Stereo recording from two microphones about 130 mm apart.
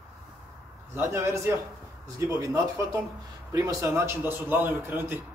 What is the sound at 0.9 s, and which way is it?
A man's voice, 20° right (ahead or behind).